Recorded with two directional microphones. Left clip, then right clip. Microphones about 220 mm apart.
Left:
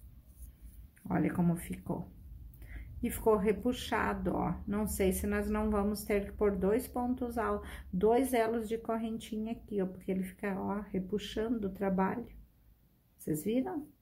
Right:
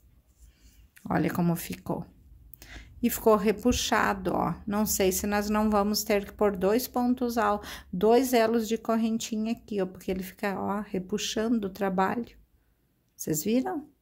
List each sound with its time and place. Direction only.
0.9 s a woman's voice: 45° right (ahead or behind)